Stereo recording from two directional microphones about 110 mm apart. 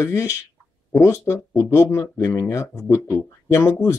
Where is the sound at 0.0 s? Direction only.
30° left (ahead or behind).